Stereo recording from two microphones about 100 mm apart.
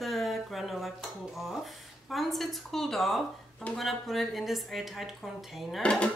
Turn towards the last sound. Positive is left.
turn(degrees=10)  # may be behind; listen again after turning